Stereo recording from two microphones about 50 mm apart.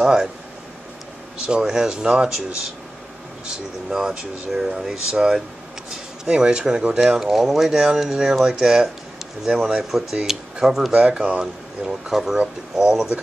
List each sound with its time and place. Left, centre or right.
0.0 s speech: centre
1.4 s speech: centre
11.1 s speech: right
11.3 s speech: centre